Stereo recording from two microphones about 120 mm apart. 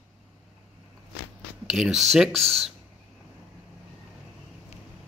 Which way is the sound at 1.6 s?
5° right (ahead or behind).